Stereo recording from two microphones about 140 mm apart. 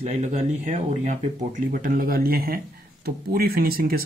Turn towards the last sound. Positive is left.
turn(degrees=-90)